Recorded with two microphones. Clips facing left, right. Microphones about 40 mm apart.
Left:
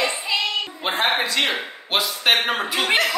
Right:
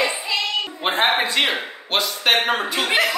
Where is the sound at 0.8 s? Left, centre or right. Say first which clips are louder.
Right 3 dB; right.